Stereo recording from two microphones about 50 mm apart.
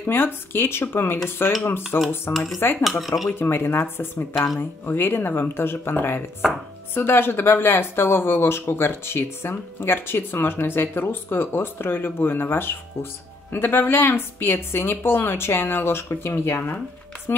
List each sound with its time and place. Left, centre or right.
0.0 s speech: left
2.3 s speech: centre
3.3 s speech: left
16.3 s speech: left